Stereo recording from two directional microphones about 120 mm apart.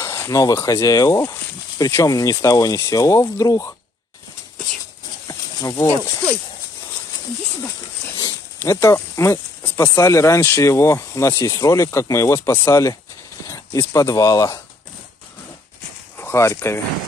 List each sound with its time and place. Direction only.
0.0 s speech: 25° left (ahead or behind)
5.3 s a sound: 30° left (ahead or behind)
8.2 s speech: 25° left (ahead or behind)
16.2 s speech: 20° left (ahead or behind)